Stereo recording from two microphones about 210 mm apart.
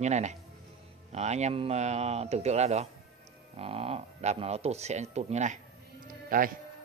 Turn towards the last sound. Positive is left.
turn(degrees=-40)  # may be behind; listen again after turning